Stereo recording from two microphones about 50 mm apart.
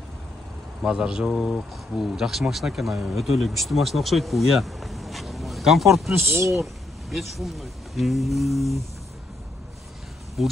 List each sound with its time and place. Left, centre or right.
0.8 s speech: centre
6.1 s speech: right
6.6 s speech: centre
10.4 s speech: centre